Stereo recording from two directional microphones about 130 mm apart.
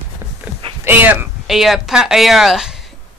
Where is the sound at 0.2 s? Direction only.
20° right (ahead or behind).